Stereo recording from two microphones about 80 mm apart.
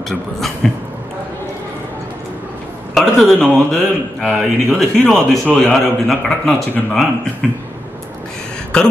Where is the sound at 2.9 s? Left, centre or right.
Centre.